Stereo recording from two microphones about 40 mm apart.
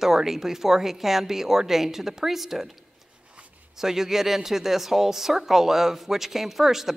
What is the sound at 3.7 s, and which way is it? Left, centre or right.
Speech, centre.